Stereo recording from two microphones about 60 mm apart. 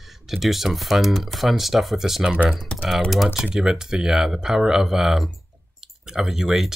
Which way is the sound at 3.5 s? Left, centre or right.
Centre.